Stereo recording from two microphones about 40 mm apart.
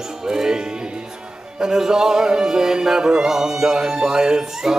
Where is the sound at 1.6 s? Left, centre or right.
Centre.